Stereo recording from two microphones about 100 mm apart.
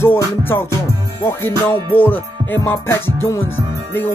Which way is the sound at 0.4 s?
25° left (ahead or behind).